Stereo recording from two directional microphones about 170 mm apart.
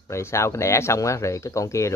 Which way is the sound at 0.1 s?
15° left (ahead or behind).